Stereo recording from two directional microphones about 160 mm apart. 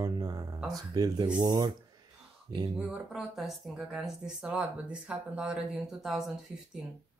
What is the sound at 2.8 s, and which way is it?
Speech, 5° right (ahead or behind).